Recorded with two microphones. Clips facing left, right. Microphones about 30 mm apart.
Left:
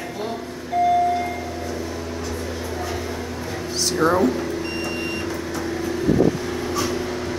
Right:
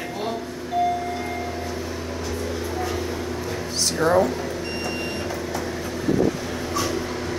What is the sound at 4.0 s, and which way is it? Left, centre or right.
Speech, centre.